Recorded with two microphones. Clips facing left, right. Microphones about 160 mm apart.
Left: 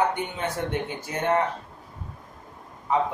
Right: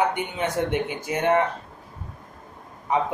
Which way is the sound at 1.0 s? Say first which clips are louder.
Right 3 dB; 15° right (ahead or behind).